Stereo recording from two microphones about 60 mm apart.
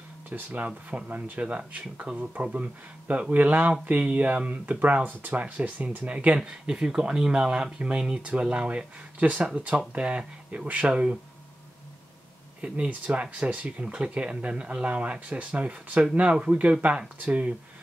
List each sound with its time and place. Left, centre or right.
0.3 s speech: right
6.4 s speech: centre
12.6 s speech: centre